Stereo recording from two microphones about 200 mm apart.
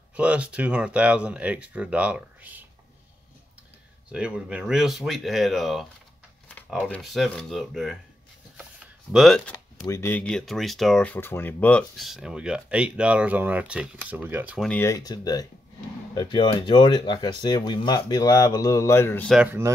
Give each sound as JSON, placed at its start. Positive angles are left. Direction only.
{"t": 0.1, "sound": "speech", "side_deg": -5}
{"t": 4.1, "sound": "speech", "side_deg": -5}
{"t": 8.5, "sound": "a sound", "side_deg": -5}
{"t": 9.8, "sound": "speech", "side_deg": 10}
{"t": 14.7, "sound": "speech", "side_deg": 15}
{"t": 19.3, "sound": "speech", "side_deg": -10}